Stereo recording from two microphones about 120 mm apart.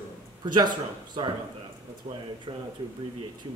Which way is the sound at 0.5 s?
40° right (ahead or behind).